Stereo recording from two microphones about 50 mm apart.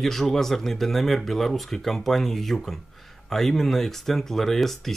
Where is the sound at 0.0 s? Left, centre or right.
Centre.